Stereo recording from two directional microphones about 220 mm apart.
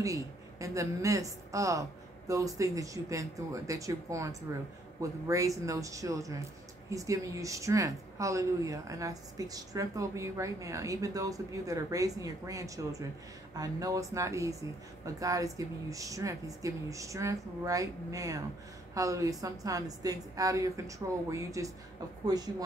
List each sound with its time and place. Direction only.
0.0 s speech: 15° right (ahead or behind)